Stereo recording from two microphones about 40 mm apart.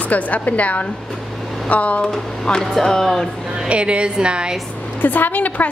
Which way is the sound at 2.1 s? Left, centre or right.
Centre.